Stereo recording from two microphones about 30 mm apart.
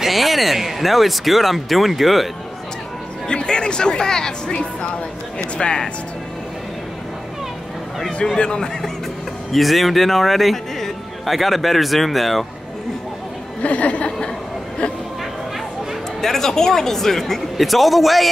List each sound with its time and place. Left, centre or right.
0.0 s a man's voice: centre
3.3 s speech: left
4.5 s a woman's voice: left
8.4 s a woman's voice: left
9.5 s a man's voice: centre
13.6 s speech: left
16.2 s speech: centre
17.6 s a man's voice: centre